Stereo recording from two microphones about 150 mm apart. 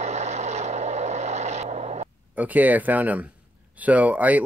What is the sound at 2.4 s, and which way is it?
Speech, 10° right (ahead or behind).